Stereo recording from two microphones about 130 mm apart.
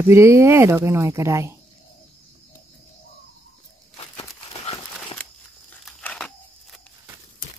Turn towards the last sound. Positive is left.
turn(degrees=5)  # may be behind; listen again after turning